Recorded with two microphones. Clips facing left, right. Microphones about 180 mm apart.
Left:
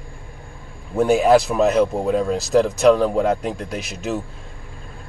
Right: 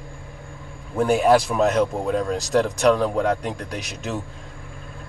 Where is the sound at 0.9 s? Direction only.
5° left (ahead or behind).